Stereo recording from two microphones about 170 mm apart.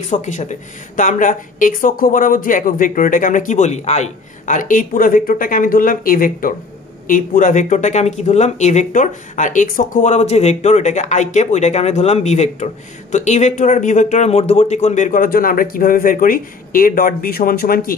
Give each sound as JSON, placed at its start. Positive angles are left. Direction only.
{"t": 0.1, "sound": "a woman's voice", "side_deg": 45}